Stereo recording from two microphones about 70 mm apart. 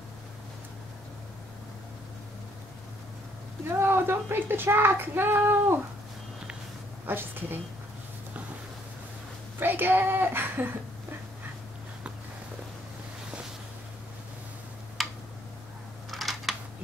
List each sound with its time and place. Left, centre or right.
3.7 s speech: right
7.1 s speech: right
9.6 s a woman's voice: right
15.0 s tick-tock: centre
16.1 s typing: centre